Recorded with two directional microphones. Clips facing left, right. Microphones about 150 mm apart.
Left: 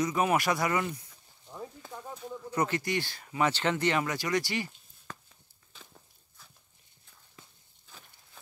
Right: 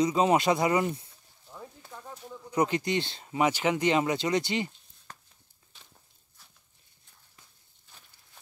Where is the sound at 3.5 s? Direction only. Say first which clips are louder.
Right 4 dB; 15° right (ahead or behind).